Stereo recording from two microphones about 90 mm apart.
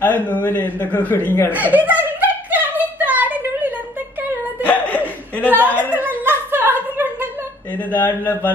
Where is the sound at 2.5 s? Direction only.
20° right (ahead or behind).